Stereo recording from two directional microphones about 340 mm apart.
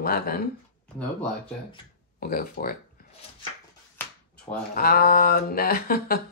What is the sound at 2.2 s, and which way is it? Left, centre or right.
Speech, left.